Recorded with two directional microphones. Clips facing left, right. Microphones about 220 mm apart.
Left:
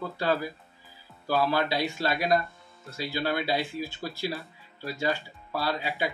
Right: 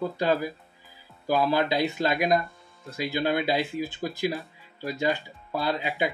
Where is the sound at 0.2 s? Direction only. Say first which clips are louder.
Right 1 dB; 15° right (ahead or behind).